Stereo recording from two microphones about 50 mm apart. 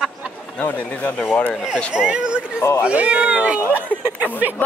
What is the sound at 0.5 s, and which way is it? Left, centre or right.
Speech, left.